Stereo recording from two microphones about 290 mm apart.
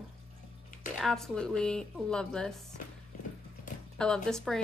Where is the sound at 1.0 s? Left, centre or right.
Centre.